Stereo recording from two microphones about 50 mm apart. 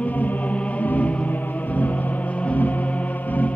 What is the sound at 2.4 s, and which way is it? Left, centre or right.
Music, left.